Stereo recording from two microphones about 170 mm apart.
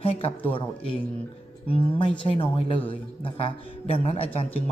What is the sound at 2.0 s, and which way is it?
A woman's voice, 30° left (ahead or behind).